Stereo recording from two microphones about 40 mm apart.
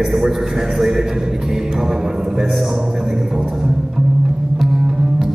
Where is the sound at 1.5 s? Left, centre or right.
Centre.